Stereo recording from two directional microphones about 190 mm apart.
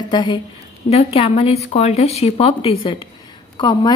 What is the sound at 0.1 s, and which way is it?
A woman's voice, 25° left (ahead or behind).